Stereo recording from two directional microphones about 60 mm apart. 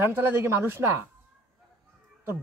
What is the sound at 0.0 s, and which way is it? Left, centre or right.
Speech, right.